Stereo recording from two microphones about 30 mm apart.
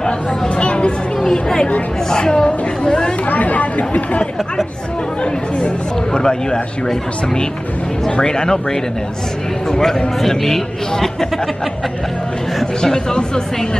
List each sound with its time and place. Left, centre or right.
0.6 s a sound: left
1.2 s a woman's voice: left
3.3 s speech: left
6.1 s a woman's voice: left
8.2 s a woman's voice: left
9.7 s a man's voice: centre
12.8 s a woman's voice: left